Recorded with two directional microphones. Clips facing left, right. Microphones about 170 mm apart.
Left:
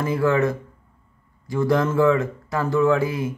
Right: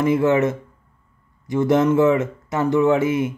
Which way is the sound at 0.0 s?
20° right (ahead or behind).